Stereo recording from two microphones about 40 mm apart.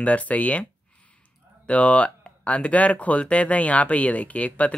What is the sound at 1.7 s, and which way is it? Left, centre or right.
Speech, left.